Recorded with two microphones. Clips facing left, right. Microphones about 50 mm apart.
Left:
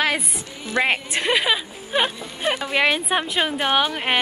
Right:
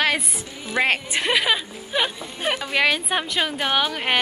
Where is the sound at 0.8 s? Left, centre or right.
Centre.